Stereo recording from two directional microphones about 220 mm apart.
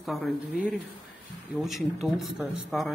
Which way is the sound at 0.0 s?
Centre (ahead or behind).